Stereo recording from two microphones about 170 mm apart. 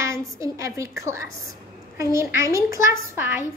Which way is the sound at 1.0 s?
15° right (ahead or behind).